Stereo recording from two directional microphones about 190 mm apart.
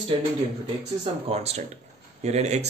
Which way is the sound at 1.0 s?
30° right (ahead or behind).